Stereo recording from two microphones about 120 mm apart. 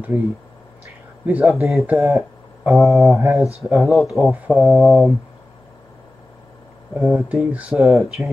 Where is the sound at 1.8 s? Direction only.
20° right (ahead or behind).